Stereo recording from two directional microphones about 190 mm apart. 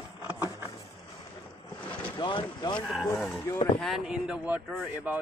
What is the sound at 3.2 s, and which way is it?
Speech, centre (ahead or behind).